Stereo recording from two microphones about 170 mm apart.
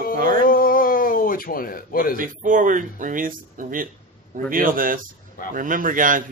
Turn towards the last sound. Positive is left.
turn(degrees=-50)  # may be behind; listen again after turning